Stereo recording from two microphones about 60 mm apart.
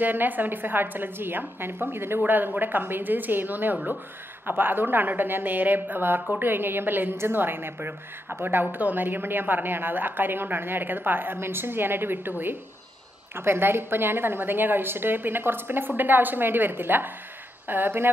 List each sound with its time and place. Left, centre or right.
0.0 s a woman's voice: right